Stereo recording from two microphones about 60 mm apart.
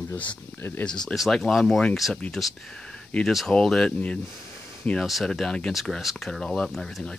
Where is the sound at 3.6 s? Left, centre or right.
Centre.